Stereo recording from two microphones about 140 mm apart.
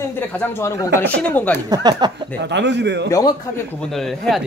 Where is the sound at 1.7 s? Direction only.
30° right (ahead or behind).